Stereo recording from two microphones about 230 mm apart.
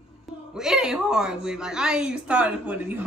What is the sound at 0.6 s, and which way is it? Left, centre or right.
Speech, centre.